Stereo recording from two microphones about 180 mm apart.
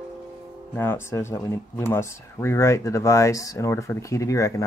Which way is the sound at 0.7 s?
15° left (ahead or behind).